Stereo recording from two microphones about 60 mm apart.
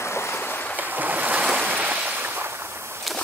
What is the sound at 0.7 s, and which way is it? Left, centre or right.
Boat, right.